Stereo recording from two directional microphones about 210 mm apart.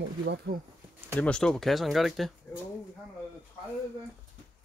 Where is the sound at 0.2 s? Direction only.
55° right (ahead or behind).